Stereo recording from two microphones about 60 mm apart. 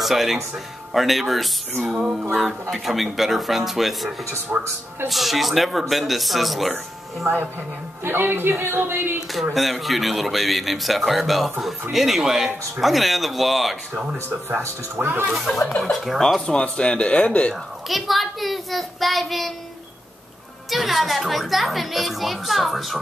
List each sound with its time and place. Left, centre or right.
0.0 s speech: centre
2.7 s speech: centre
4.5 s speech: centre
5.0 s speech: centre
8.0 s speech: right
9.3 s speech: centre
14.6 s speech: right
15.3 s speech: centre
17.8 s speech: centre
20.7 s speech: centre